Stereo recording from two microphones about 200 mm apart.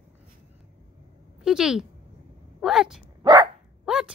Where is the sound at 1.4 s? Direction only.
5° right (ahead or behind).